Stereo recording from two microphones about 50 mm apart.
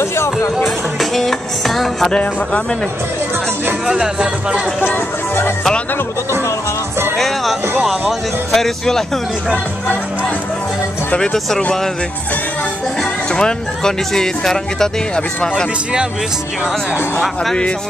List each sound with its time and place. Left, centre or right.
0.0 s music: left
0.7 s speech: centre
2.0 s speech: centre
3.8 s speech: centre
7.2 s music: centre
11.3 s speech: centre
13.0 s speech: centre
17.2 s speech: centre